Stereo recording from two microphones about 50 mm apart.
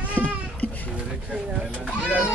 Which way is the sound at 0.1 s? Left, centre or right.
Left.